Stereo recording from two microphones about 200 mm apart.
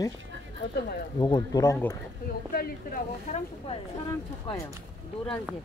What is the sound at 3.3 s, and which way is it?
Speech, 40° left (ahead or behind).